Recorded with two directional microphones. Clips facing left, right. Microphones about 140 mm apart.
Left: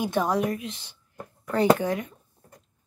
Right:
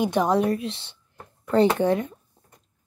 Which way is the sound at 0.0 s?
20° right (ahead or behind).